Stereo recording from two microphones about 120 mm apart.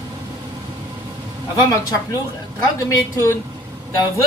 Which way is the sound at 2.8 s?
25° left (ahead or behind).